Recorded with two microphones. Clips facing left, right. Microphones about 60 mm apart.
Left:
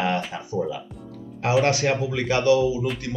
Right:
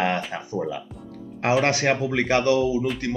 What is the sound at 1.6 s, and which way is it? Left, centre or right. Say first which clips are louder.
Speech: even; right.